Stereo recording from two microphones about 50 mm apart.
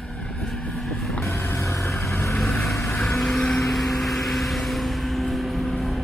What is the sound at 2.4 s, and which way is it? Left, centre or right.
Vehicle, centre.